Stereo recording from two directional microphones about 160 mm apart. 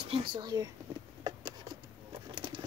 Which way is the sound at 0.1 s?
30° right (ahead or behind).